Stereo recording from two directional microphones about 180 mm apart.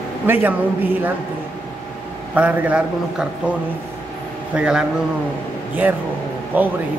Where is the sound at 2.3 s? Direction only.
10° right (ahead or behind).